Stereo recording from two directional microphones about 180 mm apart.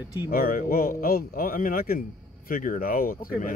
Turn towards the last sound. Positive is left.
turn(degrees=55)  # may be behind; listen again after turning